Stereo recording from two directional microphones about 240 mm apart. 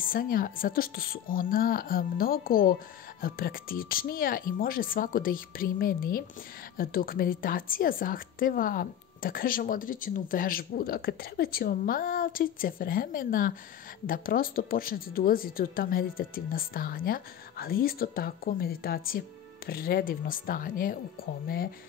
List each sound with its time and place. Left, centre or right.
0.0 s speech: left